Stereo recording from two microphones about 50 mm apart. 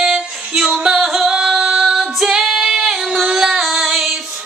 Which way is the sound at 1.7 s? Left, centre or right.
Centre.